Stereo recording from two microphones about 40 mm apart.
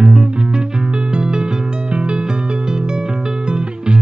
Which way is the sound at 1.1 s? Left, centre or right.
Centre.